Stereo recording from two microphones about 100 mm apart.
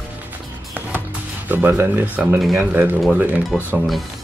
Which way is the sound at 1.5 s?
20° right (ahead or behind).